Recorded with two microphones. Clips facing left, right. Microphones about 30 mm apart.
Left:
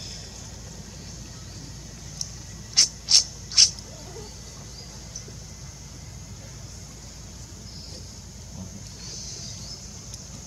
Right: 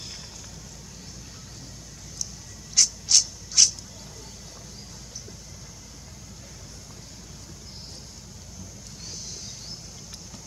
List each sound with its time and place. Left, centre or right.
2.7 s cat: left